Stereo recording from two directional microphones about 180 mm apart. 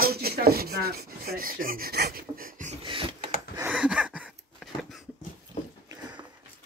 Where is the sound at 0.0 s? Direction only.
60° right (ahead or behind).